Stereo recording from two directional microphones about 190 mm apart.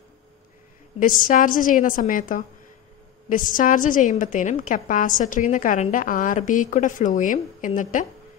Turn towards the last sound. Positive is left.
turn(degrees=45)  # may be behind; listen again after turning